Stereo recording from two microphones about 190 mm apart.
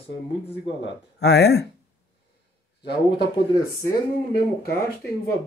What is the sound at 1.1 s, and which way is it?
Speech, 60° left (ahead or behind).